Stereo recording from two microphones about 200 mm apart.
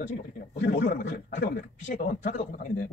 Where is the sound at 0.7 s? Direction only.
40° left (ahead or behind).